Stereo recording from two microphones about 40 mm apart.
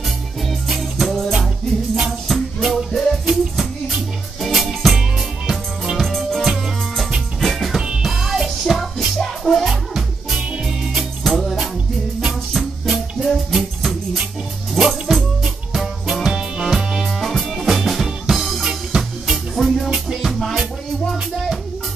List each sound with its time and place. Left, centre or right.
0.5 s music: centre
2.9 s music: centre
3.3 s music: centre
5.9 s music: centre
8.0 s music: centre
9.2 s music: centre
9.7 s music: centre
16.3 s music: centre
18.3 s drum kit: centre
18.6 s music: centre
19.5 s music: centre
19.9 s music: centre
20.2 s music: centre